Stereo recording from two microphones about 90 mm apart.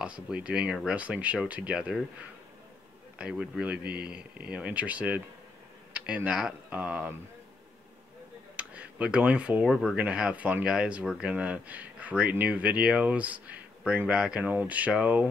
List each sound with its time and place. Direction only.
0.0 s speech: 10° right (ahead or behind)
3.2 s speech: 10° right (ahead or behind)
8.5 s speech: 15° right (ahead or behind)